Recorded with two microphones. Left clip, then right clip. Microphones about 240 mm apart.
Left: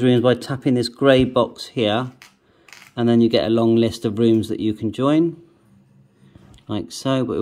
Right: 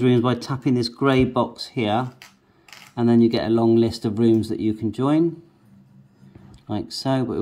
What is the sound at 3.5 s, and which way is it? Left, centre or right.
Speech, centre.